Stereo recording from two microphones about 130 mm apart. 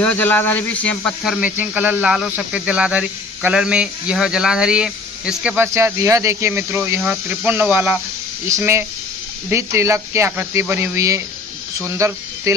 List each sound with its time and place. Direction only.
0.0 s speech: 15° left (ahead or behind)
1.2 s speech: centre (ahead or behind)
5.7 s speech: 20° right (ahead or behind)